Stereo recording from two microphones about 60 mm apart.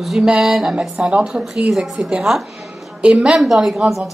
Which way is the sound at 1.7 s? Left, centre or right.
Centre.